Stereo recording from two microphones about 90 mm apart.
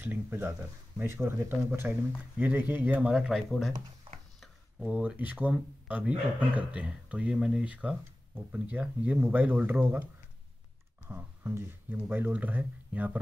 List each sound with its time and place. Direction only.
0.0 s speech: 25° right (ahead or behind); by 3.7 s centre (ahead or behind)
4.4 s a sound: 5° right (ahead or behind)
5.1 s speech: 20° right (ahead or behind)
11.1 s speech: 25° right (ahead or behind)